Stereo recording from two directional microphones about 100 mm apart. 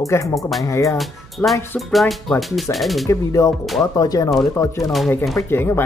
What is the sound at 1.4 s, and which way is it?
Speech, 20° left (ahead or behind).